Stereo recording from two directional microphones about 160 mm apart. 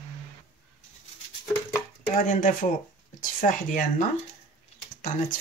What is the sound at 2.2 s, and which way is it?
Speech, 55° left (ahead or behind).